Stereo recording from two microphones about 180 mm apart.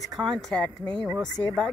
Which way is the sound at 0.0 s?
Centre (ahead or behind).